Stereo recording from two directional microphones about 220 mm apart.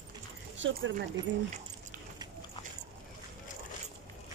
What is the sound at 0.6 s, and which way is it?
Speech, 60° right (ahead or behind).